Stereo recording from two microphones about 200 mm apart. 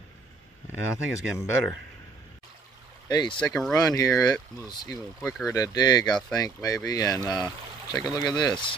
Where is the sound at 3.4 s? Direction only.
Centre (ahead or behind).